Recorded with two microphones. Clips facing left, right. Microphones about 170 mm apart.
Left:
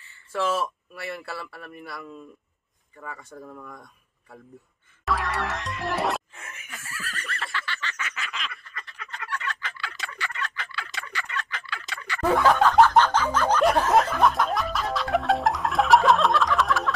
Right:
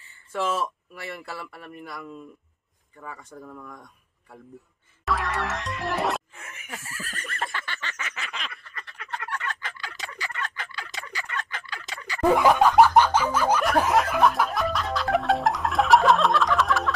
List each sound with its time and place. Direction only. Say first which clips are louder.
0.3 s speech: left 1 dB; 5° left (ahead or behind)
5.0 s music: even; centre (ahead or behind)
6.9 s neigh: left 5 dB; 45° right (ahead or behind)
8.1 s a sound: left 1 dB; 40° right (ahead or behind)
12.2 s snicker: right 2 dB; 15° right (ahead or behind)
13.7 s music: even; 10° right (ahead or behind)